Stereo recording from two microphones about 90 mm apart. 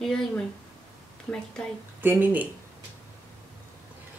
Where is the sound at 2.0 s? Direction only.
20° right (ahead or behind).